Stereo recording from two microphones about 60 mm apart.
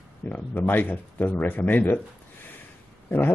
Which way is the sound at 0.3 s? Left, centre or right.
Left.